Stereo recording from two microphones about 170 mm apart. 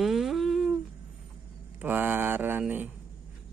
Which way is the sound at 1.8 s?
10° right (ahead or behind).